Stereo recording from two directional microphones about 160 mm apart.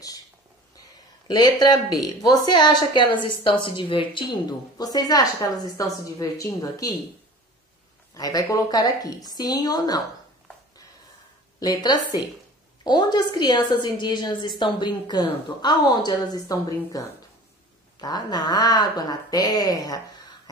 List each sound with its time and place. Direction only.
1.2 s a woman's voice: 25° left (ahead or behind)
8.1 s a woman's voice: 20° left (ahead or behind)
11.6 s a woman's voice: 25° left (ahead or behind)
18.0 s a woman's voice: 25° left (ahead or behind)